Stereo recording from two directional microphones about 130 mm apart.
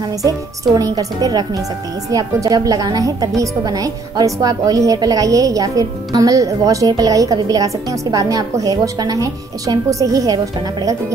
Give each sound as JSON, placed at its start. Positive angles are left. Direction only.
{"t": 0.7, "sound": "a woman's voice", "side_deg": -30}